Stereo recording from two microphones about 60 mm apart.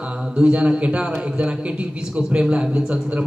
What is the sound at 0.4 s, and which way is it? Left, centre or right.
A man's voice, centre.